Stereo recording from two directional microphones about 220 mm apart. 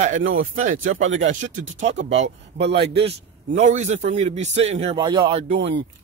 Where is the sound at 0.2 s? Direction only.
65° right (ahead or behind).